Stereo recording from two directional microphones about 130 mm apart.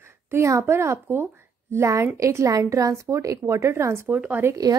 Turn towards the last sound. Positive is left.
turn(degrees=-15)  # may be behind; listen again after turning